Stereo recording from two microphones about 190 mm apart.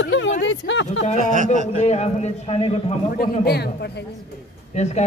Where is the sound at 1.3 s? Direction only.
40° right (ahead or behind).